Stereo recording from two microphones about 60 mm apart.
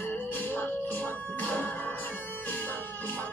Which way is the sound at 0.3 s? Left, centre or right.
Left.